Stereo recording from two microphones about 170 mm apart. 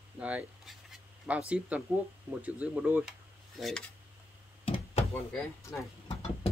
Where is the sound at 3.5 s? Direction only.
Centre (ahead or behind).